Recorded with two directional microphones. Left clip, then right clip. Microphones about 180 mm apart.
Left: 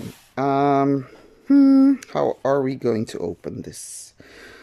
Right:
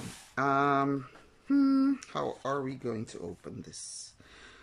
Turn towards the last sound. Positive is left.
turn(degrees=45)  # may be behind; listen again after turning